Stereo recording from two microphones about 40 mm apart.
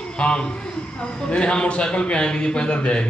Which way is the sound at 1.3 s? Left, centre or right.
Left.